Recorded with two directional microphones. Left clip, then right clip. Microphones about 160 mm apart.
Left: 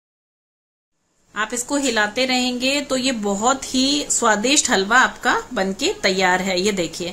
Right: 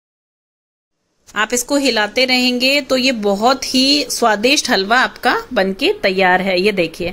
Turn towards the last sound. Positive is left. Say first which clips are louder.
# right 6 dB
turn(degrees=-20)  # may be behind; listen again after turning